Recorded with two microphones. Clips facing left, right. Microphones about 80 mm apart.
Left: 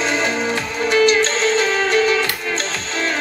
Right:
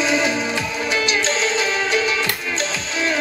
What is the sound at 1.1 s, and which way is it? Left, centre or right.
Music, left.